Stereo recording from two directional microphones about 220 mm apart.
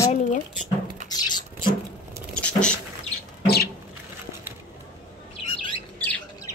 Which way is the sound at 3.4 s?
45° left (ahead or behind).